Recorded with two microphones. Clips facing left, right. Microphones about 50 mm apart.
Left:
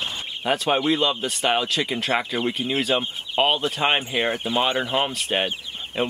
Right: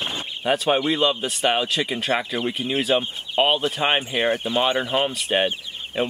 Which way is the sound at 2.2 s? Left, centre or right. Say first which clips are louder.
Even; centre.